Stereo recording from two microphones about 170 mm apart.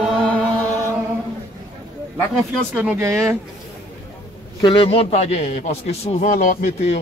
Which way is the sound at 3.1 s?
15° right (ahead or behind).